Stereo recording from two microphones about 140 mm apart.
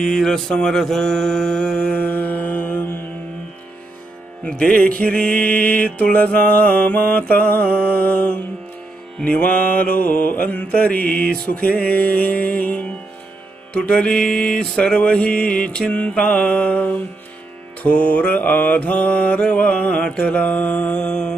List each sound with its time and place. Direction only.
0.0 s mantra: 5° left (ahead or behind)
4.5 s mantra: 5° left (ahead or behind)
9.7 s mantra: 85° left
10.0 s mantra: 10° left (ahead or behind)